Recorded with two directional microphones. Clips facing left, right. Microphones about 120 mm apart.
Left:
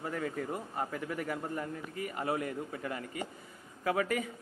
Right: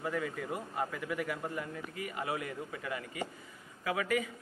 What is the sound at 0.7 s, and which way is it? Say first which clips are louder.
A man's voice: right 2 dB; 35° left (ahead or behind).